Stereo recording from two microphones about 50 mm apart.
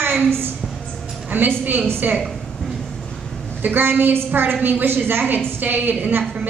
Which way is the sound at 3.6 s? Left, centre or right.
Right.